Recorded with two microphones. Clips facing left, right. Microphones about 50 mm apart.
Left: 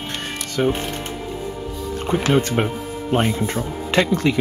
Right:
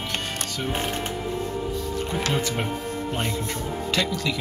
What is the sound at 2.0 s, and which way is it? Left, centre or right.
Speech, left.